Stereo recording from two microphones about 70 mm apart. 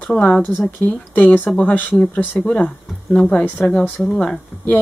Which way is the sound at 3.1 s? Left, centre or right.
Centre.